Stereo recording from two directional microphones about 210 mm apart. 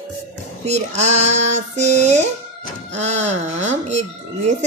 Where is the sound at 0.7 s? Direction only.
35° right (ahead or behind).